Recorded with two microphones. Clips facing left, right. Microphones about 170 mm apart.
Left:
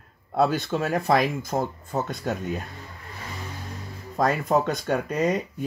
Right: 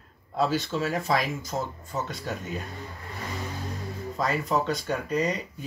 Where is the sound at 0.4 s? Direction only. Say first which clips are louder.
Left 3 dB; 55° left (ahead or behind).